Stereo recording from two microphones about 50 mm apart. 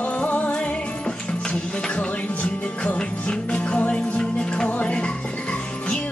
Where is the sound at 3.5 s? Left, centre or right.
Centre.